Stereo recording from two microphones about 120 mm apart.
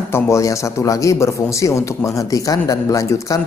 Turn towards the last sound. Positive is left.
turn(degrees=30)  # may be behind; listen again after turning